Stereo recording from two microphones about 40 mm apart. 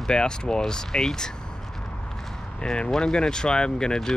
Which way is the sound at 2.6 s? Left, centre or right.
Left.